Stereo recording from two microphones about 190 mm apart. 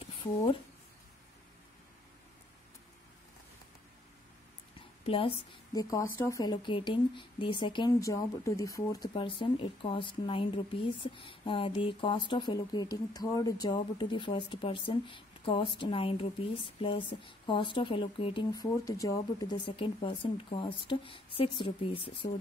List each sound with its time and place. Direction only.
0.0 s a sound: 30° left (ahead or behind)
5.0 s speech: 30° left (ahead or behind)
9.1 s speech: 25° left (ahead or behind)